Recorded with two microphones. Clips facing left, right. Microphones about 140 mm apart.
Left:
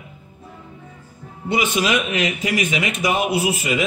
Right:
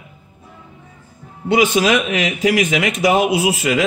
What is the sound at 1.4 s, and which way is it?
Speech, 90° right.